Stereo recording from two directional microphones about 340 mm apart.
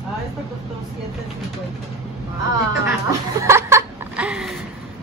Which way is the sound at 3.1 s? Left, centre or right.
Centre.